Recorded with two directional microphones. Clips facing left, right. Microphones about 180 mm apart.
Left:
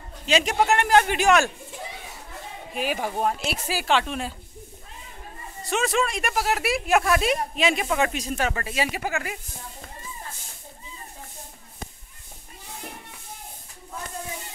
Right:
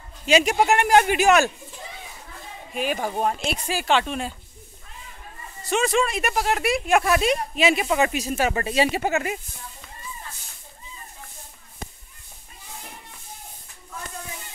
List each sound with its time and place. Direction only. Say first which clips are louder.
0.3 s a man's voice: right 3 dB; 10° right (ahead or behind)
2.7 s speech: right 1 dB; 5° left (ahead or behind)
5.6 s a man's voice: right 2 dB; centre (ahead or behind)
8.5 s speech: right 6 dB; 25° right (ahead or behind)